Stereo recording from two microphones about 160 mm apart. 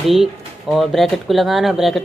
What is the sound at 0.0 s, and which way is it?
Speech, centre (ahead or behind).